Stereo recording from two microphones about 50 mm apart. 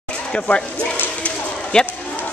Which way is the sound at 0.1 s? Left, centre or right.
Left.